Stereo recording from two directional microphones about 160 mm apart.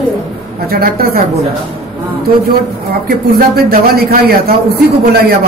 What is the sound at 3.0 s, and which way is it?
A man's voice, 65° right (ahead or behind).